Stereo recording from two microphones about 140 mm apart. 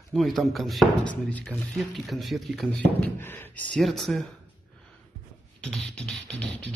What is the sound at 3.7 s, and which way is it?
Speech, centre (ahead or behind).